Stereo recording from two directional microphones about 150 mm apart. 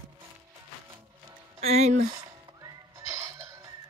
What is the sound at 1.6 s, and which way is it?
Speech, 45° right (ahead or behind).